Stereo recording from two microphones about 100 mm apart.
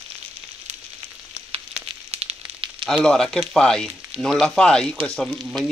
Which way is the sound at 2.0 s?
90° right.